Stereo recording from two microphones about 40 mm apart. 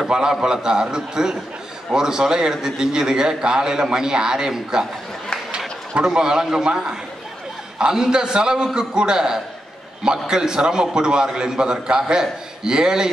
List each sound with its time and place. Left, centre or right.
0.1 s a man's voice: centre
6.0 s a man's voice: centre